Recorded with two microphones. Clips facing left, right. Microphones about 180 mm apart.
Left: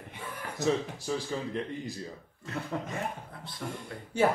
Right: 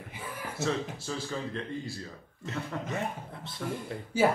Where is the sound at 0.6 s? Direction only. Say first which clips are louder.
Left 3 dB; 15° left (ahead or behind).